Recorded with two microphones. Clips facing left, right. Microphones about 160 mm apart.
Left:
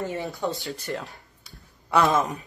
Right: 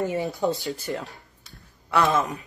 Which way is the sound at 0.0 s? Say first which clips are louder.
Right 4 dB; 20° right (ahead or behind).